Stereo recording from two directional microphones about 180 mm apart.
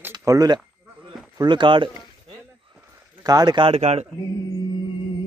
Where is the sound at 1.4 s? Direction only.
25° right (ahead or behind).